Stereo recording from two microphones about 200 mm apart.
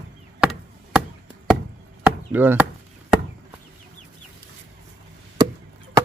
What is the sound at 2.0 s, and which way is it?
Chop, 10° right (ahead or behind).